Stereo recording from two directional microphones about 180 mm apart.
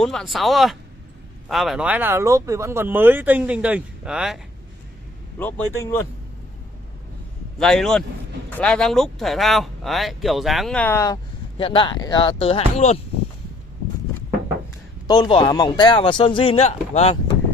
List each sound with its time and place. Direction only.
0.0 s speech: centre (ahead or behind)
5.4 s speech: 15° left (ahead or behind)
7.5 s speech: 5° left (ahead or behind)
11.5 s speech: 30° left (ahead or behind)
15.0 s speech: 25° left (ahead or behind)